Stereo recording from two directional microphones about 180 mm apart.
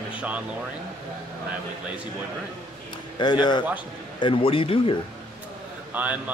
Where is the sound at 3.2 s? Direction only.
25° left (ahead or behind).